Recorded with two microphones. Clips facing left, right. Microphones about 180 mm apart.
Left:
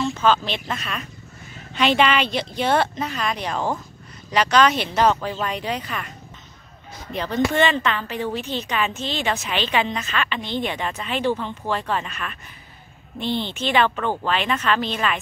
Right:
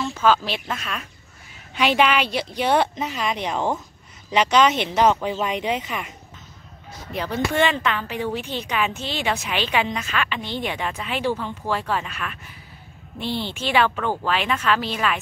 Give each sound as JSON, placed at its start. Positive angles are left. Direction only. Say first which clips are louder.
{"t": 0.0, "sound": "a woman's voice", "louder": "even", "side_deg": -5}
{"t": 7.1, "sound": "a woman's voice", "louder": "left 2 dB", "side_deg": -10}